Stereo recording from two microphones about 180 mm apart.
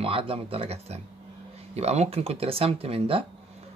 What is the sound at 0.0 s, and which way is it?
Speech, 30° right (ahead or behind).